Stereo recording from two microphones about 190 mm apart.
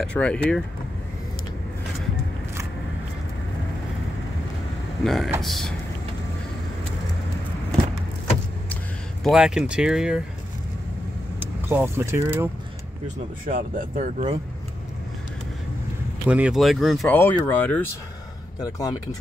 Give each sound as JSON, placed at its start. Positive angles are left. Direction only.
{"t": 0.0, "sound": "speech", "side_deg": 5}
{"t": 5.0, "sound": "speech", "side_deg": 0}
{"t": 9.2, "sound": "speech", "side_deg": -5}
{"t": 11.3, "sound": "speech", "side_deg": -10}
{"t": 13.5, "sound": "speech", "side_deg": -45}
{"t": 16.3, "sound": "speech", "side_deg": -5}
{"t": 17.2, "sound": "speech", "side_deg": 10}